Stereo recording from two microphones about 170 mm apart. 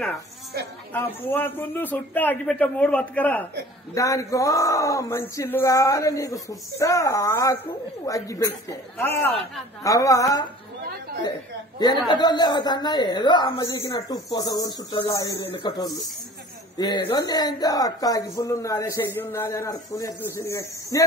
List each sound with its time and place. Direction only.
0.9 s a man's voice: 10° left (ahead or behind)
12.1 s speech: 25° left (ahead or behind)